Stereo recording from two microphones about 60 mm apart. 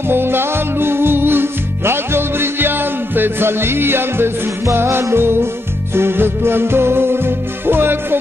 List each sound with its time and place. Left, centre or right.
0.1 s music: right